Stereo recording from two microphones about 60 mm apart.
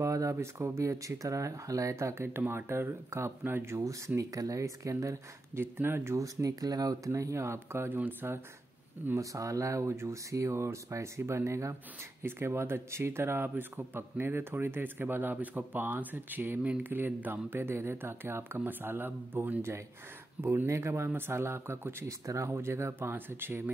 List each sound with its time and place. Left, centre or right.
0.0 s a sound: right
0.7 s speech: right
4.2 s speech: right
5.6 s a man's voice: right
6.1 s speech: right
7.9 s a man's voice: right
9.2 s speech: right
12.2 s a man's voice: right
20.7 s speech: right
22.2 s speech: right
22.5 s speech: right